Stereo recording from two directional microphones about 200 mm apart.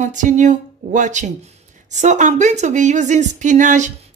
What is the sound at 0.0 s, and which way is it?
A woman's voice, 40° right (ahead or behind).